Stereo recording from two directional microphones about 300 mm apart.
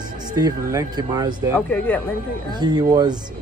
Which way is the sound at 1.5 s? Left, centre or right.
Centre.